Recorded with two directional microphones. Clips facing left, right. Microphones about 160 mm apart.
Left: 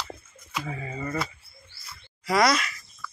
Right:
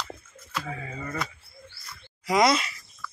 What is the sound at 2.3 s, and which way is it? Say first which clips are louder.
Speech: right 1 dB; 25° right (ahead or behind).